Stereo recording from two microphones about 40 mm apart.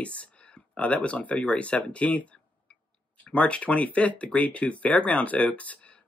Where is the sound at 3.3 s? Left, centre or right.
Left.